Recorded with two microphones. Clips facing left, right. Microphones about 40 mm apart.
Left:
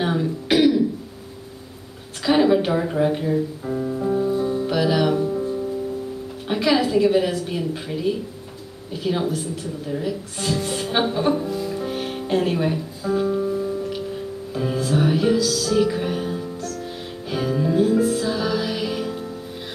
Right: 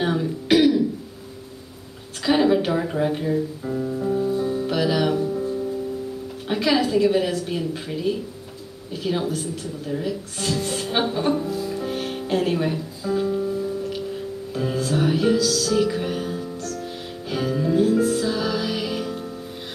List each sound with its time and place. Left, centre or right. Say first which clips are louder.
0.0 s throat clearing: left 1 dB; centre
2.2 s music: left 1 dB; centre
6.4 s a woman's voice: left 1 dB; centre
13.1 s music: left 2 dB; centre